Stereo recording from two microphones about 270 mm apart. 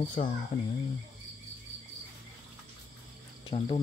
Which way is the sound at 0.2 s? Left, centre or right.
Left.